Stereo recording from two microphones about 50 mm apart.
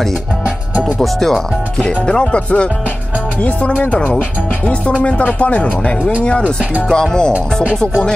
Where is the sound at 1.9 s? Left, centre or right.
Left.